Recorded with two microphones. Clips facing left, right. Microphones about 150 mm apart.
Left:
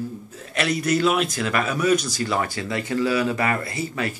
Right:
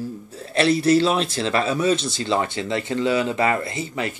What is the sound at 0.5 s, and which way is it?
Speech, 30° right (ahead or behind).